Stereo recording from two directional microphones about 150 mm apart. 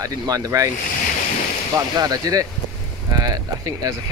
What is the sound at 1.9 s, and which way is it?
Speech, 25° right (ahead or behind).